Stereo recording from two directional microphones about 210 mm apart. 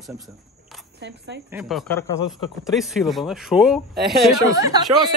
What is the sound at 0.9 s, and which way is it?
Speech, 55° right (ahead or behind).